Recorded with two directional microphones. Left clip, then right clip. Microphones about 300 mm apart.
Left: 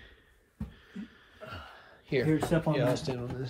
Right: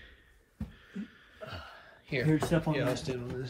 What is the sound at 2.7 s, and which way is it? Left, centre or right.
Speech, centre.